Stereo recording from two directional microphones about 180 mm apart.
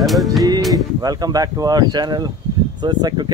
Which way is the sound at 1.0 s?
20° right (ahead or behind).